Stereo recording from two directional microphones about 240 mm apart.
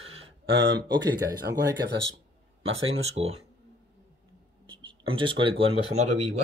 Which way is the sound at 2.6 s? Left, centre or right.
Right.